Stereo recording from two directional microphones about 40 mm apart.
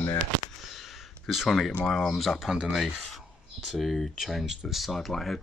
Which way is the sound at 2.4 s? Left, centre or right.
Centre.